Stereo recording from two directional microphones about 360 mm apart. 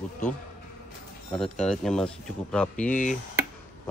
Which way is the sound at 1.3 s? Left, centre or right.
Centre.